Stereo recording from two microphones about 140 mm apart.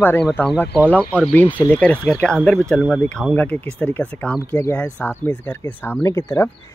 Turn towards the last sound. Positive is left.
turn(degrees=20)  # may be behind; listen again after turning